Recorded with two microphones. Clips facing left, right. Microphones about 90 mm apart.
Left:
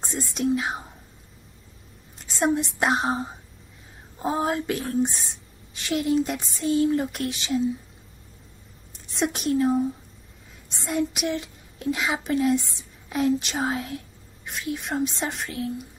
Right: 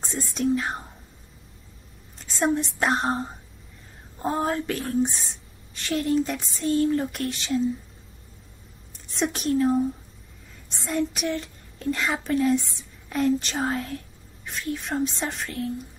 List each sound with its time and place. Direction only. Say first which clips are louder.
0.0 s speech: even; centre (ahead or behind)
2.4 s a woman's voice: left 1 dB; 5° left (ahead or behind)
9.2 s a woman's voice: even; centre (ahead or behind)